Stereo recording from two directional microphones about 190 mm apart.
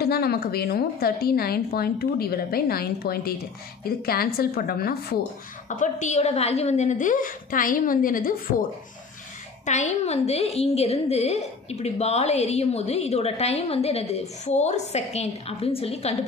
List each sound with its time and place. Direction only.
0.0 s a woman's voice: 55° left (ahead or behind)
5.7 s a woman's voice: 40° left (ahead or behind)
9.7 s a woman's voice: 35° left (ahead or behind)